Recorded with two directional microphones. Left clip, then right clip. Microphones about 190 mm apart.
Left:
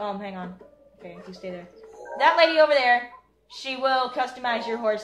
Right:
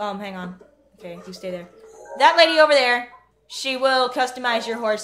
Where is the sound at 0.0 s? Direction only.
60° right (ahead or behind).